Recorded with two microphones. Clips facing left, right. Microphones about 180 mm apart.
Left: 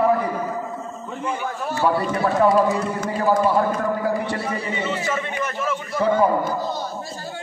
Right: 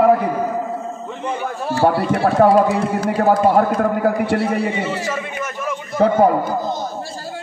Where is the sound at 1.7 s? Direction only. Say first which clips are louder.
Right 5 dB; 65° right (ahead or behind).